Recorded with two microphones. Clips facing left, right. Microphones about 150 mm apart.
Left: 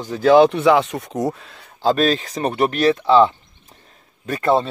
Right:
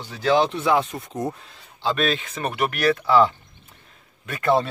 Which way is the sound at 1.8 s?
40° left (ahead or behind).